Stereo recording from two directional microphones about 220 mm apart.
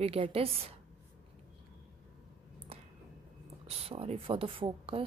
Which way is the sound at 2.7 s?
25° right (ahead or behind).